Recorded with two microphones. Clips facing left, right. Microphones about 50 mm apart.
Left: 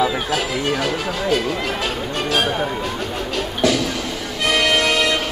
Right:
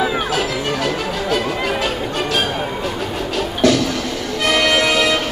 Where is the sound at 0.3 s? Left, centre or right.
Centre.